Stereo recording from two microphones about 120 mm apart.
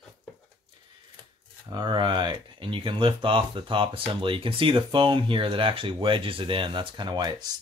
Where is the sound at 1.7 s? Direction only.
40° right (ahead or behind).